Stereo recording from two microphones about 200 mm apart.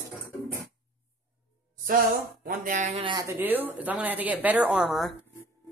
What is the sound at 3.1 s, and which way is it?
A woman's voice, 10° right (ahead or behind).